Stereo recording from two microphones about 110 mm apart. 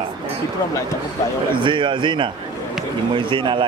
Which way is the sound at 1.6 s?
45° right (ahead or behind).